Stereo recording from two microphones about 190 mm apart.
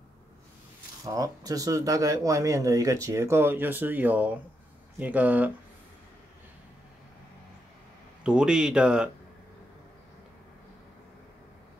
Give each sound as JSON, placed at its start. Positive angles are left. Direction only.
{"t": 1.0, "sound": "speech", "side_deg": -20}
{"t": 8.2, "sound": "speech", "side_deg": -5}